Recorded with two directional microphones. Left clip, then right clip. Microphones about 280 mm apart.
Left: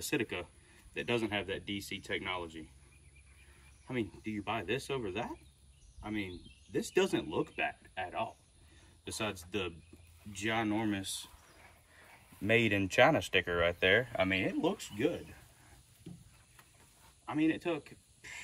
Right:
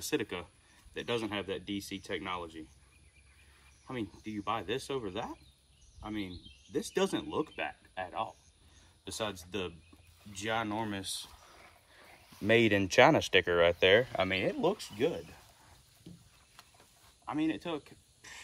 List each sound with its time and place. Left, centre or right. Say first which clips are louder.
0.0 s speech: right 1 dB; centre
3.8 s speech: left 2 dB; centre
12.4 s speech: right 3 dB; centre
17.3 s speech: left 1 dB; centre